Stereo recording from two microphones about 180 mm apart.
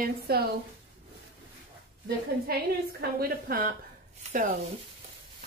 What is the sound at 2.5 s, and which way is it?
A woman's voice, 60° right (ahead or behind).